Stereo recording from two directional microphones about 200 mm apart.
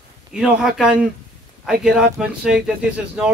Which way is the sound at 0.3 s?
Centre (ahead or behind).